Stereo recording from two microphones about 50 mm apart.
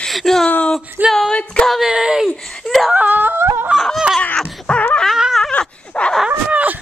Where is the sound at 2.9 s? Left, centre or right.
Right.